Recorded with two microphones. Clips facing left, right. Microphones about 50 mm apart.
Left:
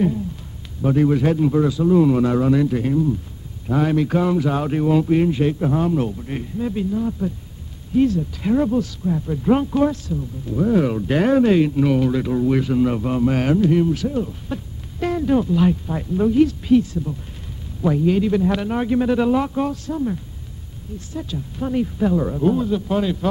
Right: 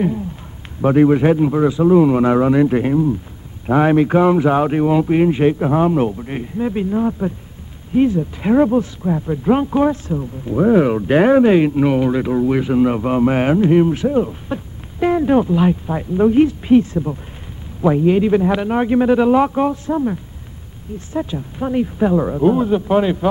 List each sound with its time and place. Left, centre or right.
0.8 s speech: right
7.9 s speech: right
9.7 s speech: right
16.3 s speech: right